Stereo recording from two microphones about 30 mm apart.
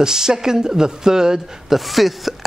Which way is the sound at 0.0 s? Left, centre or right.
Centre.